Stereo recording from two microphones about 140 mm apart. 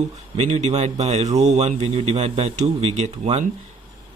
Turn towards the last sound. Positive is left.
turn(degrees=-55)  # may be behind; listen again after turning